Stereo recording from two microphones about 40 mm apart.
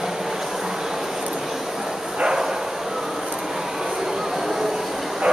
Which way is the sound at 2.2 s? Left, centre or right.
Centre.